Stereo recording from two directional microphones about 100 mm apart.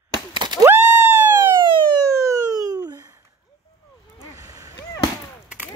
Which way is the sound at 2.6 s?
40° right (ahead or behind).